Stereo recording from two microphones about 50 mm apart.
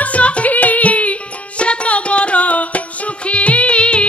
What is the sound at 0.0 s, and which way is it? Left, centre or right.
Music, left.